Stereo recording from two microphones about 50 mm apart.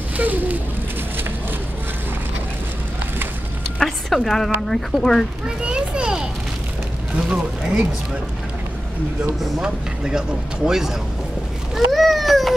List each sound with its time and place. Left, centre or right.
0.2 s speech: right
3.8 s a sound: centre
4.6 s speech: centre
5.6 s a child's voice: right
9.6 s speech: centre
11.7 s a sound: centre